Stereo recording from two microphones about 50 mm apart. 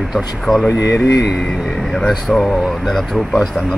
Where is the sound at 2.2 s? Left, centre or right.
Centre.